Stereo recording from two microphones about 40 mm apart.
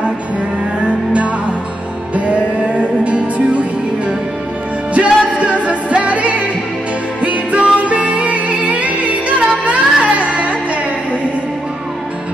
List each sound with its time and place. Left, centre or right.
0.7 s music: right
4.9 s music: right